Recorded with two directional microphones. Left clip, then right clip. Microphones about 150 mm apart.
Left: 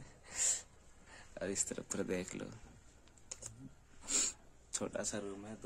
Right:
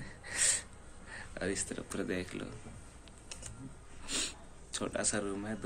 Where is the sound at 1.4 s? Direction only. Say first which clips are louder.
Right 3 dB; 80° left.